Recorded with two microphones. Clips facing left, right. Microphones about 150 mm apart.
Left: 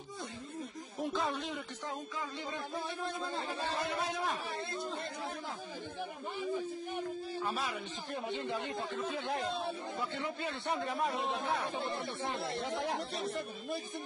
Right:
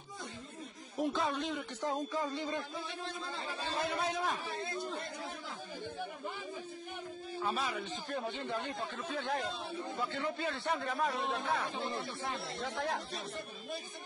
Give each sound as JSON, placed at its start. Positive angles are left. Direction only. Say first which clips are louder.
{"t": 1.0, "sound": "speech", "louder": "right 1 dB", "side_deg": 0}
{"t": 7.4, "sound": "speech", "louder": "right 3 dB", "side_deg": 0}
{"t": 10.1, "sound": "speech", "louder": "right 1 dB", "side_deg": 20}
{"t": 11.1, "sound": "speech", "louder": "even", "side_deg": 0}
{"t": 12.2, "sound": "speech", "louder": "left 3 dB", "side_deg": 20}